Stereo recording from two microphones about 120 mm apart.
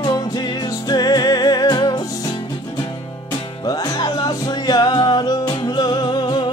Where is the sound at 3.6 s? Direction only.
30° left (ahead or behind).